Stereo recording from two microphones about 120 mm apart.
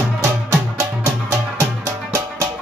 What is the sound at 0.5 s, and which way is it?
Music, 20° right (ahead or behind).